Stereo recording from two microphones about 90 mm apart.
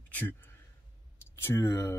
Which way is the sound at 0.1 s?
20° left (ahead or behind).